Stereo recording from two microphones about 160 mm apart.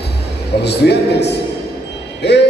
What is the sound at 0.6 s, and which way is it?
Speech, 90° left.